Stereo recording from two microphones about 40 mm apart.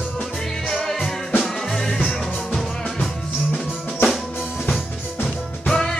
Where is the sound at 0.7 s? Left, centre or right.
Centre.